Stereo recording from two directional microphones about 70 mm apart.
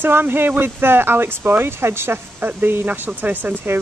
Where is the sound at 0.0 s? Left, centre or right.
Right.